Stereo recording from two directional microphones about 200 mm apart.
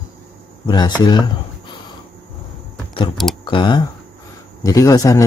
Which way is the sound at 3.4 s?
25° left (ahead or behind).